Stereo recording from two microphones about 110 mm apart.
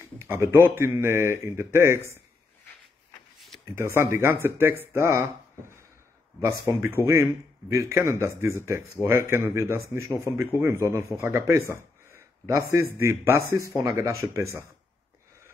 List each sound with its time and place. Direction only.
0.0 s speech: 20° right (ahead or behind)
3.3 s a sound: 5° left (ahead or behind)
3.7 s speech: 25° right (ahead or behind)